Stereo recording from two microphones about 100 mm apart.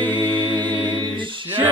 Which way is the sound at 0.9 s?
55° right (ahead or behind).